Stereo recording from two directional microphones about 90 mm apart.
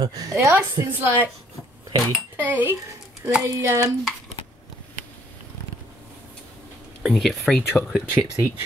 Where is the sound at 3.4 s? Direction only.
35° right (ahead or behind).